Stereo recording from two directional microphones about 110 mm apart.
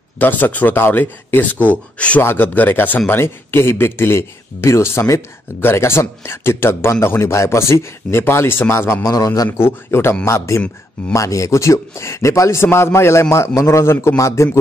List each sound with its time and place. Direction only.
0.2 s speech: 15° left (ahead or behind); by 9.5 s 35° left (ahead or behind)
9.5 s speech: 20° left (ahead or behind)